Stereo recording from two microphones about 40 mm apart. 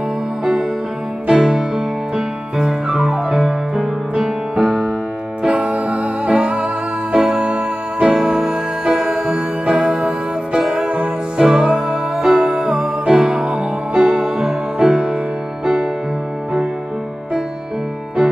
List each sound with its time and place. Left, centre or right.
1.3 s music: centre
5.5 s music: right
8.1 s music: centre